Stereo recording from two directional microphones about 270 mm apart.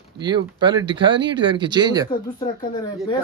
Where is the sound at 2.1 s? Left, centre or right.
Centre.